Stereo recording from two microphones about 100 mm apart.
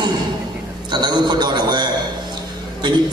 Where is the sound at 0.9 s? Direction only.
45° right (ahead or behind).